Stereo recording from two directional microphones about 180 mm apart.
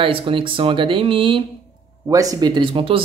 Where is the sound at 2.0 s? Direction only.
20° right (ahead or behind).